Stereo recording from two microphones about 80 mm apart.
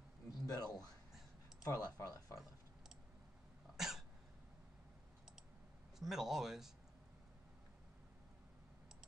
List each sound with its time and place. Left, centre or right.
0.3 s speech: left
3.7 s cough: centre
5.9 s speech: centre